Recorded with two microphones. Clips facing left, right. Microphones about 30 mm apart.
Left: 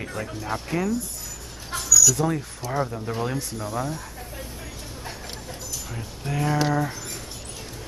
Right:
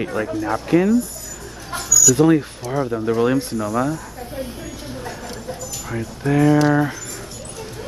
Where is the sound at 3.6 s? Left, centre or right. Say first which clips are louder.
Right 8 dB; right.